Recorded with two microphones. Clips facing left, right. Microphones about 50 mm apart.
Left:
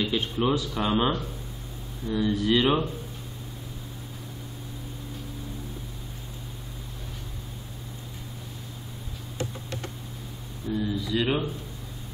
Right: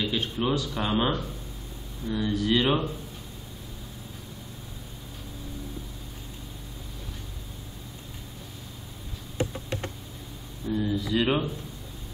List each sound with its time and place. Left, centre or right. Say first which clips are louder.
0.0 s speech: left 2 dB; centre
9.4 s computer keyboard: right 4 dB; right
10.8 s speech: right 1 dB; centre